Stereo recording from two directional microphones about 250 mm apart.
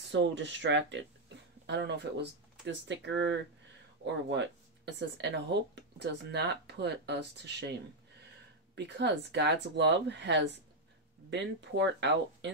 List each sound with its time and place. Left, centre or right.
0.1 s speech: right
8.7 s speech: right